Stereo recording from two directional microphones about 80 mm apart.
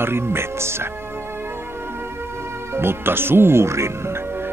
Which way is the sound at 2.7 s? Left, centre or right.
Right.